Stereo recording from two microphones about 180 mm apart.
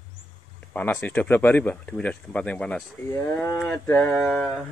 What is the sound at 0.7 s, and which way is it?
Speech, 10° left (ahead or behind).